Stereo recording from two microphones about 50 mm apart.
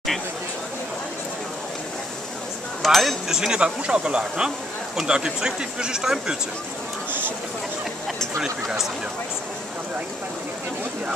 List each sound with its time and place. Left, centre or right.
2.8 s speech: centre
3.3 s speech: centre
7.1 s a sound: right